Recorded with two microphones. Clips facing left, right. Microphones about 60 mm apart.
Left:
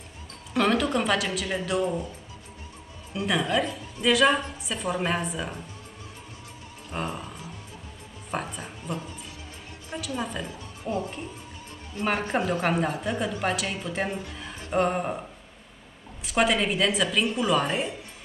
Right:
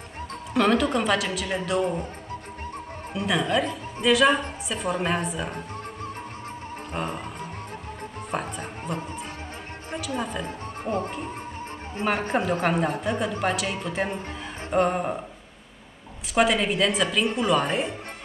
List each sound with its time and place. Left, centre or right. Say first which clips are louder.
0.6 s a woman's voice: right 2 dB; centre
3.2 s a woman's voice: right 1 dB; centre
7.1 s music: right 3 dB; right
8.3 s speech: right 1 dB; centre
9.9 s a woman's voice: right 2 dB; centre
10.4 s speech: right 4 dB; right
12.0 s a woman's voice: right 1 dB; centre
16.3 s a woman's voice: right 2 dB; centre